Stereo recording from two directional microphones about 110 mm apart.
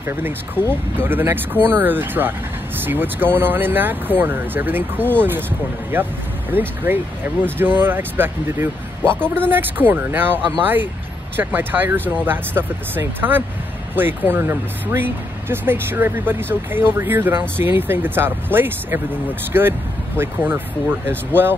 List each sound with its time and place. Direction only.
0.0 s speech: 20° right (ahead or behind)
6.5 s speech: 20° right (ahead or behind)